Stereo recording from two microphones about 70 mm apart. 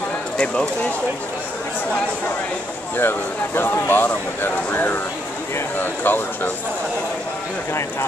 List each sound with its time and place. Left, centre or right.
3.0 s speech: left